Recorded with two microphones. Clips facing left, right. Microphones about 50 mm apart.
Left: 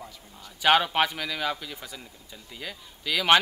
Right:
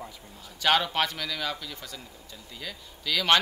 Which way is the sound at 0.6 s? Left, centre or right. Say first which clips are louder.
Left 3 dB; centre.